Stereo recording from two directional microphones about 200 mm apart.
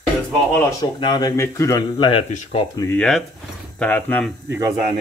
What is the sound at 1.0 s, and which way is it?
Speech, 20° left (ahead or behind).